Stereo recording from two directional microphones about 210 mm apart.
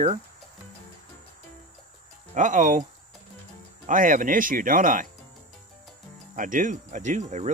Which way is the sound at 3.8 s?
40° right (ahead or behind).